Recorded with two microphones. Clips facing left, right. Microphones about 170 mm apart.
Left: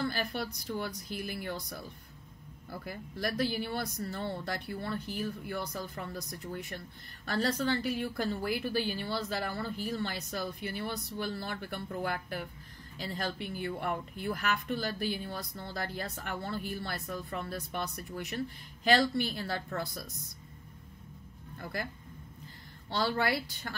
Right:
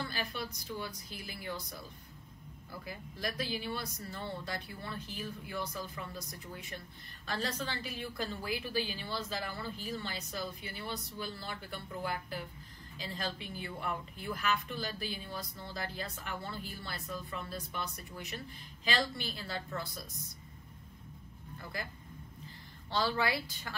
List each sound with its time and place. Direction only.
0.0 s a woman's voice: 55° left (ahead or behind)
2.8 s a woman's voice: 50° left (ahead or behind)
22.9 s speech: 55° left (ahead or behind)